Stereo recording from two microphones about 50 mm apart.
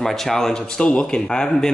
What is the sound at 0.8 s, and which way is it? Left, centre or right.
Speech, centre.